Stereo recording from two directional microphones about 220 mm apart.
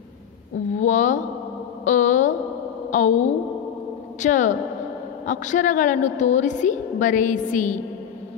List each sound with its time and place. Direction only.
0.7 s a woman's voice: 35° left (ahead or behind)
1.9 s a sound: 35° left (ahead or behind)
2.9 s a woman's voice: 35° left (ahead or behind)